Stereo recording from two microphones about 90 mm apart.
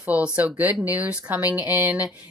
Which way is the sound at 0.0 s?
10° right (ahead or behind).